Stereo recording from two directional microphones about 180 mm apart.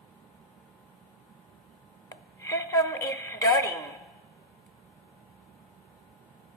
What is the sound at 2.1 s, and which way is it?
Telephone, 15° left (ahead or behind).